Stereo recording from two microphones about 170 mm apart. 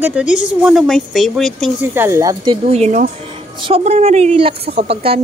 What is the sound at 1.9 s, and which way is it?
Female singing, 15° right (ahead or behind).